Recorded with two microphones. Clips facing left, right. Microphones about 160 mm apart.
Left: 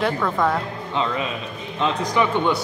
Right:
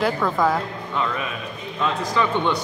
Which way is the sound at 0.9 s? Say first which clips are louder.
Left 2 dB; 20° left (ahead or behind).